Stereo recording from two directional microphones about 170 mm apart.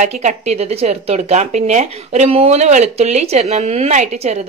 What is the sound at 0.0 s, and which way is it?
Speech, 45° right (ahead or behind).